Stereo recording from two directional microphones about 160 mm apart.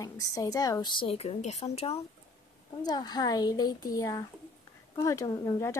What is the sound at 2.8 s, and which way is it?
A woman's voice, 25° left (ahead or behind).